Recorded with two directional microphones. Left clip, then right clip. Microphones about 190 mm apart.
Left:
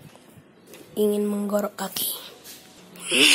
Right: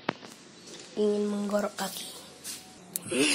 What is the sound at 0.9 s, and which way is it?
Speech, 30° left (ahead or behind).